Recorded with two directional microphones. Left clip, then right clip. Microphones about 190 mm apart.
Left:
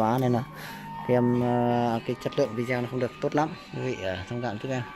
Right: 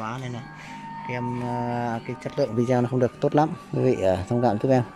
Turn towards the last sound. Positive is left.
turn(degrees=-25)  # may be behind; listen again after turning